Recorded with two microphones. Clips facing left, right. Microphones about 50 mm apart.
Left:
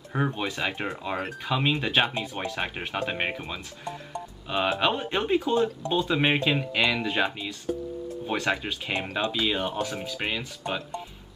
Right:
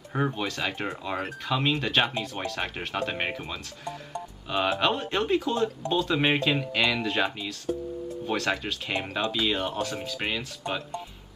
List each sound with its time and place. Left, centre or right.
0.1 s speech: centre